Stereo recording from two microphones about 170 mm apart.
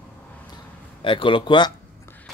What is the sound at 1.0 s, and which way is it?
Speech, 30° left (ahead or behind).